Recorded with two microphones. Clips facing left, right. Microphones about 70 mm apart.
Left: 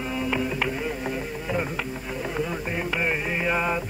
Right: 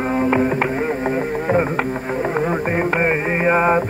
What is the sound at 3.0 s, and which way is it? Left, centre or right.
Music, right.